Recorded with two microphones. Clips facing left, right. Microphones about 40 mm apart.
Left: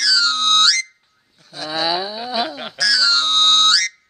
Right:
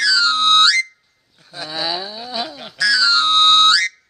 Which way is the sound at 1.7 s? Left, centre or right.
Centre.